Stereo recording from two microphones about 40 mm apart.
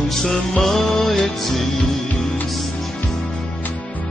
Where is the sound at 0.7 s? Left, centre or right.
Centre.